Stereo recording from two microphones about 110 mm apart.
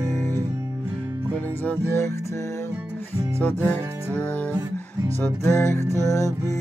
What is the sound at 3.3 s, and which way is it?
Music, 15° left (ahead or behind).